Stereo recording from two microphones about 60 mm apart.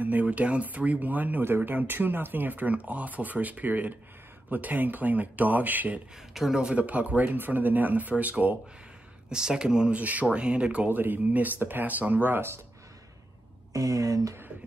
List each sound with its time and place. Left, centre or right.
0.0 s speech: right
6.3 s speech: centre
6.6 s speech: right
9.3 s speech: centre
9.9 s speech: right
10.9 s speech: right
13.7 s speech: right